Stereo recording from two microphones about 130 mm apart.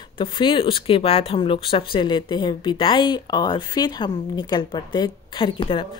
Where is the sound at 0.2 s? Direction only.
40° left (ahead or behind).